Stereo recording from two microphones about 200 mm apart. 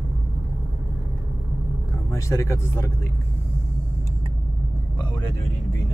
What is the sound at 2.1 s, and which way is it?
Speech, 15° left (ahead or behind).